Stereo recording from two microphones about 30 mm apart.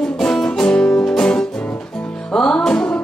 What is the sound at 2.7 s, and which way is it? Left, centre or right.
Music, left.